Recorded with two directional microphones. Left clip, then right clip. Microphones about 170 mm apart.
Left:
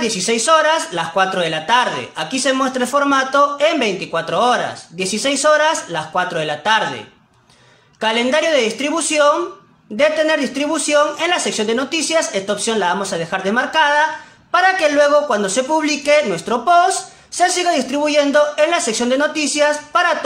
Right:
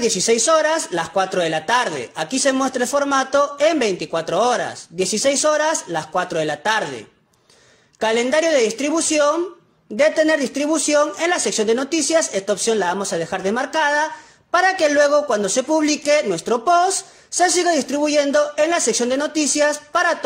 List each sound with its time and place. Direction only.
0.0 s speech: 45° right (ahead or behind)
8.0 s speech: 45° right (ahead or behind)